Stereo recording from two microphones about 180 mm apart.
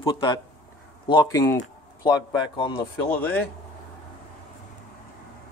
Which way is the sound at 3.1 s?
10° left (ahead or behind).